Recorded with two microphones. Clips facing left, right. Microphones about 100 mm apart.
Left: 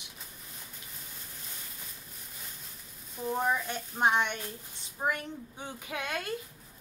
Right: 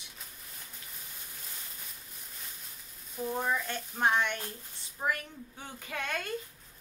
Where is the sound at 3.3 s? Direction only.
10° left (ahead or behind).